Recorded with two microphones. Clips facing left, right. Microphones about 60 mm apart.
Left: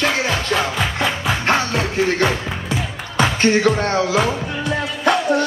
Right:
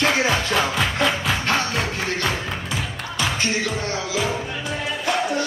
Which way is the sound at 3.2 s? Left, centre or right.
Left.